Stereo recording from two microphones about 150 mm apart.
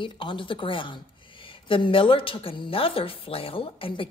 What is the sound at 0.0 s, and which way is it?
Speech, 35° left (ahead or behind).